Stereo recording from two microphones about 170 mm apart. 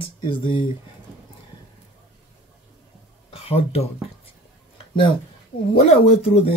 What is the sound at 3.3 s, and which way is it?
Speech, 35° left (ahead or behind).